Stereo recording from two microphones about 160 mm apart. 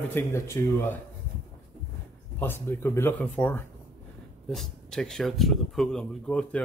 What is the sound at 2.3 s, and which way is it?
Speech, 15° left (ahead or behind).